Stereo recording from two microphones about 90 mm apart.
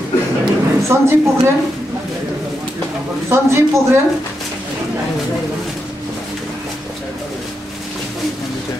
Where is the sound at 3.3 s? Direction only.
30° right (ahead or behind).